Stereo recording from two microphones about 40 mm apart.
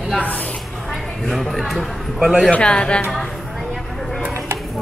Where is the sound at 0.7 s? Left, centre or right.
Centre.